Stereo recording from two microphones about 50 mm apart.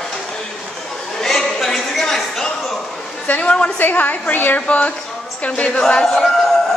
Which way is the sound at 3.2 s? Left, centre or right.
Left.